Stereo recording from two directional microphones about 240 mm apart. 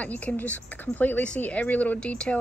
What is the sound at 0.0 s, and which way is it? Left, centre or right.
A woman's voice, centre.